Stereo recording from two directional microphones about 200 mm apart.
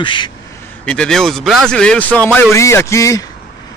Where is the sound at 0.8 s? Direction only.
5° left (ahead or behind).